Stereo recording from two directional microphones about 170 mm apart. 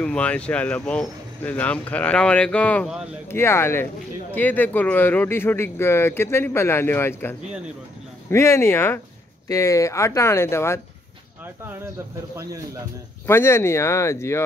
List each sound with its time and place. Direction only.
0.0 s speech: 5° left (ahead or behind)
13.3 s speech: 15° left (ahead or behind)